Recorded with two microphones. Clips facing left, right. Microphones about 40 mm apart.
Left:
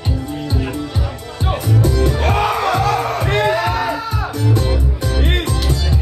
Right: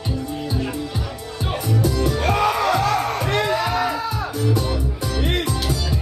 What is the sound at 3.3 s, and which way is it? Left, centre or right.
Music, left.